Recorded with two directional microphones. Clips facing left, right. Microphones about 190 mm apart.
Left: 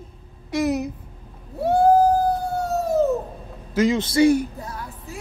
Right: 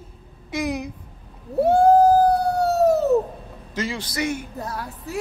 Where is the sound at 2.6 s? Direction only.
70° right (ahead or behind).